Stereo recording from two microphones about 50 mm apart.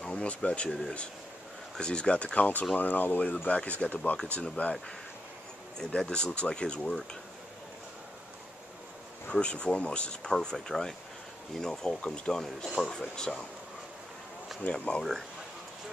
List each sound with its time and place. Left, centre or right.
0.0 s speech: left
1.8 s speech: centre
5.8 s speech: centre
9.3 s speech: left
14.7 s speech: centre